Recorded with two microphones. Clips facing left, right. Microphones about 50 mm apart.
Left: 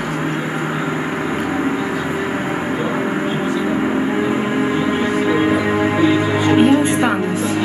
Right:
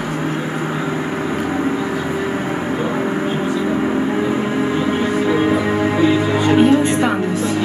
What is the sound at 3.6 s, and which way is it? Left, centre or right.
Music, left.